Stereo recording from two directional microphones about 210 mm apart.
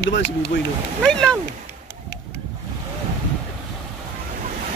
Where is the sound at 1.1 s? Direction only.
5° left (ahead or behind).